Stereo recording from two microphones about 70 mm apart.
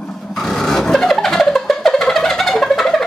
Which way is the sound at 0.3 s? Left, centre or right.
Centre.